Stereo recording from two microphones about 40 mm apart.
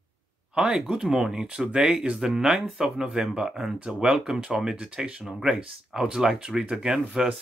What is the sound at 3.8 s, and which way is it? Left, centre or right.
Speech, right.